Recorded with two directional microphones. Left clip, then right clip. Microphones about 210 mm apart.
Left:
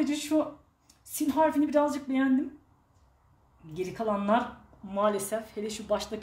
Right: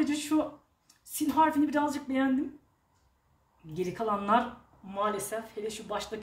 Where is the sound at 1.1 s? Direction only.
20° left (ahead or behind).